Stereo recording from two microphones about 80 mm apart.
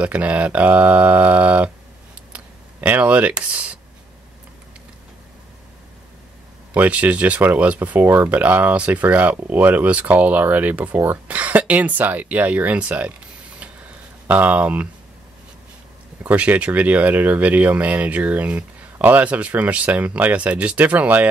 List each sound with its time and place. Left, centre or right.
0.0 s speech: centre
6.7 s speech: centre
14.2 s speech: right
16.2 s speech: centre